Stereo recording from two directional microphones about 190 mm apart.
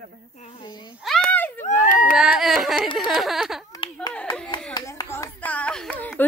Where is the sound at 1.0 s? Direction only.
5° left (ahead or behind).